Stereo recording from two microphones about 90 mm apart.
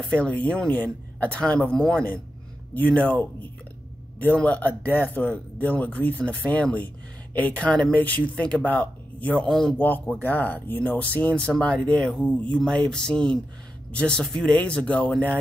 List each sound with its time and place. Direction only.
0.0 s speech: 10° left (ahead or behind)
9.8 s speech: 20° left (ahead or behind)